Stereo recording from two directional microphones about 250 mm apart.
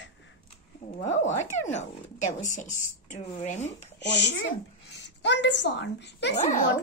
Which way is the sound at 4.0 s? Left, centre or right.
Left.